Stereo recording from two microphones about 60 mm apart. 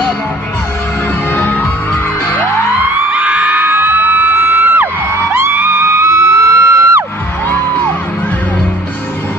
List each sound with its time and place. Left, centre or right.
1.3 s music: left
3.1 s music: right